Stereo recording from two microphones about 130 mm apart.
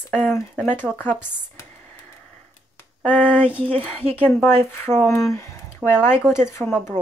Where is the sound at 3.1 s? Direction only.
10° left (ahead or behind).